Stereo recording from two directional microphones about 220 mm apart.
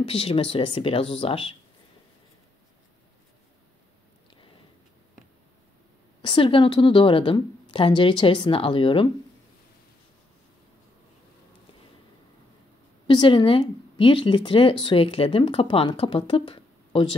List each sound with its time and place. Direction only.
0.0 s speech: 25° left (ahead or behind)
6.2 s speech: 25° left (ahead or behind)
13.0 s speech: 20° left (ahead or behind)